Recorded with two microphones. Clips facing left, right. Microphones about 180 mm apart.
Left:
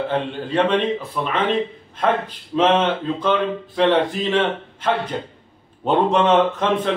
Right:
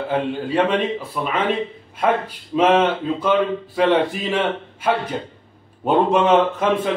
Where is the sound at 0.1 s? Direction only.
10° right (ahead or behind).